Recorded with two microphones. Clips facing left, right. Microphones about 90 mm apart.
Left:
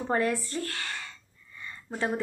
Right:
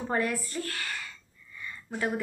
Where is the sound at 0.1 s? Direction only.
30° left (ahead or behind).